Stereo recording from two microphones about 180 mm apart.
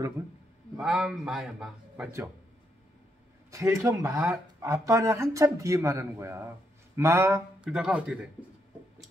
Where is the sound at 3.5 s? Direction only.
15° right (ahead or behind).